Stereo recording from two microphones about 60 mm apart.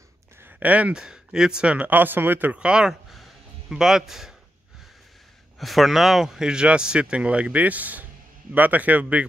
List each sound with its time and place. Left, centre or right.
0.6 s speech: right
0.9 s speech: centre; by 2.5 s right
2.5 s speech: centre
2.9 s a sound: centre
5.6 s speech: centre; by 9.2 s right